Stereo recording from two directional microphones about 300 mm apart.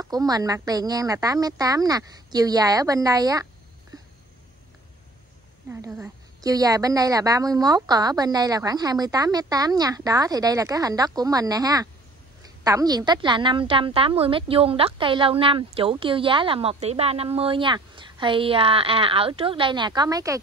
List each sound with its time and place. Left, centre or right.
0.0 s a woman's voice: centre
3.9 s a sound: centre
5.7 s a woman's voice: centre